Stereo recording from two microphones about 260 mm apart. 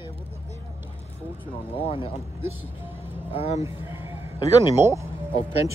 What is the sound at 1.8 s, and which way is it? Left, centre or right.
Speech, left.